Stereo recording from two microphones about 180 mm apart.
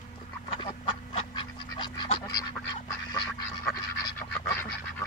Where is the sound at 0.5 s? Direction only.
30° left (ahead or behind).